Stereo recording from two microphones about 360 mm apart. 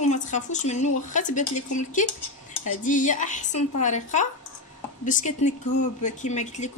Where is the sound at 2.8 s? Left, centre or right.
Left.